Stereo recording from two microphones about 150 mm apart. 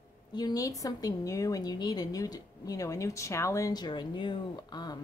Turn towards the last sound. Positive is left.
turn(degrees=30)  # may be behind; listen again after turning